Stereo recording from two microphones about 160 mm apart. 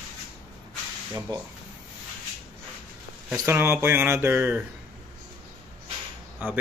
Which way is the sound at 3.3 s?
15° right (ahead or behind).